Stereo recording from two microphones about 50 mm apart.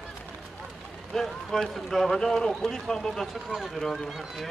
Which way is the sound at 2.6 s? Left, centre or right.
Centre.